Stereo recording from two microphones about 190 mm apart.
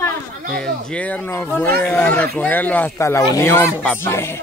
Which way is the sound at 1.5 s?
10° left (ahead or behind).